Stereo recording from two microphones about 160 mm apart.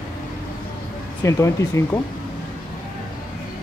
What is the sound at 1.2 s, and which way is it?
Speech, 20° left (ahead or behind).